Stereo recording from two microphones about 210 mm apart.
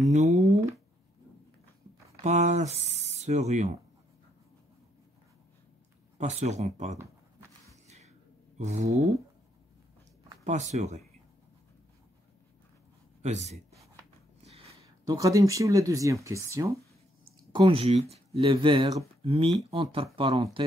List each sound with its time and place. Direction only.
0.4 s a sound: 30° right (ahead or behind)
2.2 s speech: 35° right (ahead or behind)
6.1 s speech: 35° right (ahead or behind)
8.5 s speech: 35° right (ahead or behind)
10.4 s speech: 35° right (ahead or behind)
13.2 s speech: 35° right (ahead or behind)
15.0 s speech: 15° right (ahead or behind)